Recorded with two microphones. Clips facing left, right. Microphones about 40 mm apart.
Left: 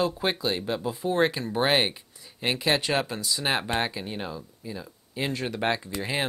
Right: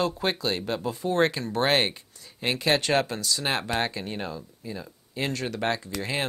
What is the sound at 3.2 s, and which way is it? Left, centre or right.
Speech, centre.